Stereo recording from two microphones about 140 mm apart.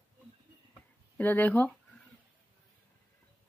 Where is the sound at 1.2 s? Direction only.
15° left (ahead or behind).